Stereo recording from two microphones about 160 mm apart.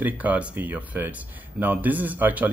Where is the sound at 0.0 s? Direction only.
10° right (ahead or behind).